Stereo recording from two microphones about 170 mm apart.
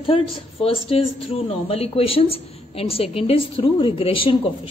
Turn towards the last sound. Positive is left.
turn(degrees=30)  # may be behind; listen again after turning